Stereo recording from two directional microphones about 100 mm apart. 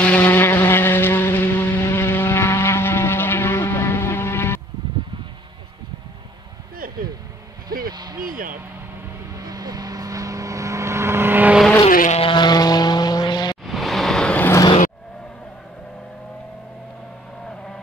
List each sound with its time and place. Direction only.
0.0 s insect: 15° left (ahead or behind)
7.9 s a sound: 45° right (ahead or behind)
9.4 s vehicle: 40° right (ahead or behind); by 11.5 s 20° right (ahead or behind)
11.8 s vehicle: 70° left (ahead or behind)
12.4 s vehicle: 40° left (ahead or behind)
13.7 s vehicle: centre (ahead or behind)